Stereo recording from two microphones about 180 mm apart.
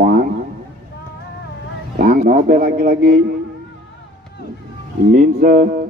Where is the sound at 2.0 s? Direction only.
45° right (ahead or behind).